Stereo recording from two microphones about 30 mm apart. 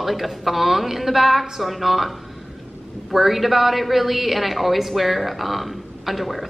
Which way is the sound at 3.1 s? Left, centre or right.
Centre.